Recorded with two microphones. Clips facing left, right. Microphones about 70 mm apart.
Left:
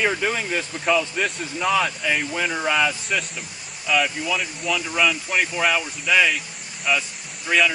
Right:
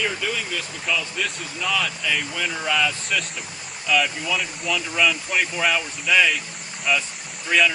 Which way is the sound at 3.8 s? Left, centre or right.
Centre.